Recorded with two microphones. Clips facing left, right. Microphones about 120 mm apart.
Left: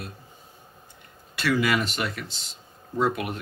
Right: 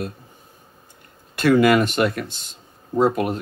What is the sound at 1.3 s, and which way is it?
Speech, 50° right (ahead or behind).